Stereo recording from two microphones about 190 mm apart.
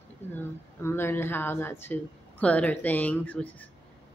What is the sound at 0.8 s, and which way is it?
Speech, 10° left (ahead or behind).